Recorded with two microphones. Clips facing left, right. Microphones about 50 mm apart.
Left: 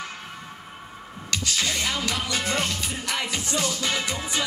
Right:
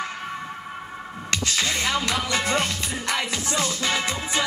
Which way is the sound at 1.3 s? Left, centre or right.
Right.